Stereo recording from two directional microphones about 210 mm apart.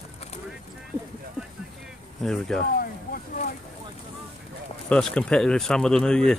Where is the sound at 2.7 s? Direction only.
45° left (ahead or behind).